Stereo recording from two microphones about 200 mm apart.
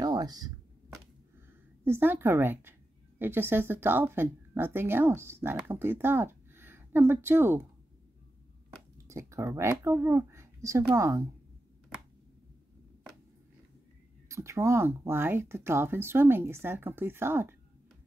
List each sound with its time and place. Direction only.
0.0 s a sound: 20° right (ahead or behind)
1.9 s speech: 10° right (ahead or behind)
8.9 s speech: 15° right (ahead or behind)
14.3 s speech: 15° right (ahead or behind)